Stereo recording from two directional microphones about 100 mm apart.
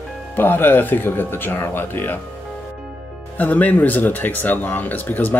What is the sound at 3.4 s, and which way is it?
Speech, 15° left (ahead or behind).